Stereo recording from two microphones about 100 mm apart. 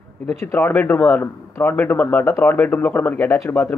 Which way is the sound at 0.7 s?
20° left (ahead or behind).